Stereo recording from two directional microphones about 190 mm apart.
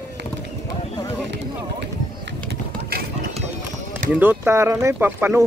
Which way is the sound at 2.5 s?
55° right (ahead or behind).